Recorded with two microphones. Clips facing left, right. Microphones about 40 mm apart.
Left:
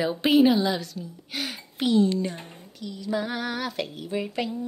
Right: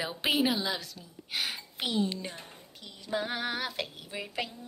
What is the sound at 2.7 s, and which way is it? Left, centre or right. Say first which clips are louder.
Female singing: left 5 dB; right.